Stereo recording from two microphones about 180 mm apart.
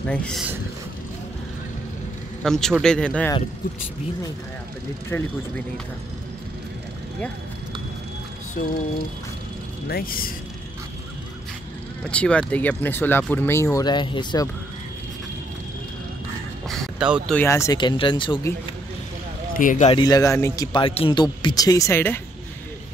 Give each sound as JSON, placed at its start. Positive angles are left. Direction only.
{"t": 0.1, "sound": "speech", "side_deg": 5}
{"t": 2.4, "sound": "speech", "side_deg": 0}
{"t": 5.1, "sound": "speech", "side_deg": 10}
{"t": 9.8, "sound": "speech", "side_deg": 55}
{"t": 12.1, "sound": "speech", "side_deg": 5}
{"t": 16.6, "sound": "a sound", "side_deg": 0}
{"t": 17.4, "sound": "speech", "side_deg": 15}
{"t": 19.5, "sound": "speech", "side_deg": 45}
{"t": 19.9, "sound": "speech", "side_deg": 20}